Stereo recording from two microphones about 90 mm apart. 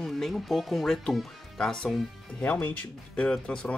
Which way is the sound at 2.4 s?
20° left (ahead or behind).